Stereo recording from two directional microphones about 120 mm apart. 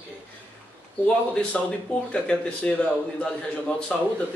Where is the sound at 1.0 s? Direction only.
10° left (ahead or behind).